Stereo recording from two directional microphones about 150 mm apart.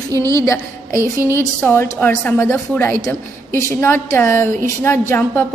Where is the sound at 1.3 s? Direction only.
15° left (ahead or behind).